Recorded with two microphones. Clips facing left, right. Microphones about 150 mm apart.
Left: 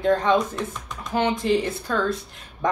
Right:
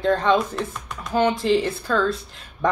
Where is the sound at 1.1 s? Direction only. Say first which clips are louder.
Right 2 dB; 20° left (ahead or behind).